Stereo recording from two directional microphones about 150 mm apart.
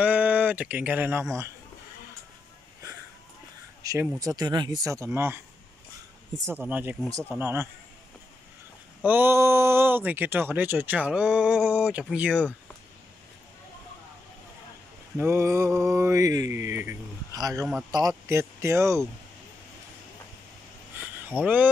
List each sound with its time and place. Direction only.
0.0 s speech: 10° right (ahead or behind)
3.8 s speech: 20° right (ahead or behind)
6.5 s speech: 10° right (ahead or behind)
9.0 s speech: 15° right (ahead or behind)
15.1 s speech: 15° right (ahead or behind)
21.3 s speech: 15° right (ahead or behind)